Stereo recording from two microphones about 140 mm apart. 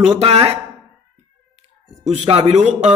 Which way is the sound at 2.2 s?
45° right (ahead or behind).